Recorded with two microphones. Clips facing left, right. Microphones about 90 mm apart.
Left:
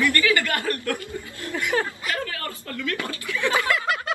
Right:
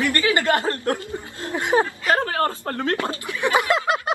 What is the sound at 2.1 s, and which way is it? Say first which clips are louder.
Speech: right 9 dB; 40° right (ahead or behind).